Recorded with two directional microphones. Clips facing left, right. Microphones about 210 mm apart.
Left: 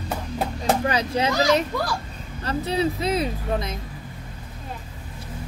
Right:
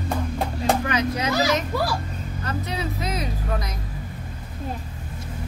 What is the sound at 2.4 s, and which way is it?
Speech, 30° left (ahead or behind).